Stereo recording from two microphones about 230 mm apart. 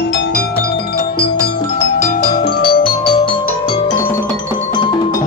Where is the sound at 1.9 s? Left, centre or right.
Left.